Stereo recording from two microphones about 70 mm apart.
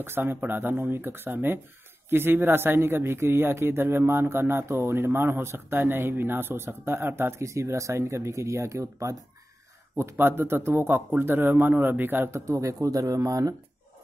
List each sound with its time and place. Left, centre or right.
0.0 s a man's voice: right
9.9 s a man's voice: right
12.4 s speech: right